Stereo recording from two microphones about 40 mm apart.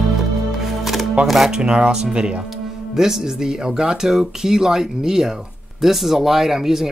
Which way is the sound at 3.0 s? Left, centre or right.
Centre.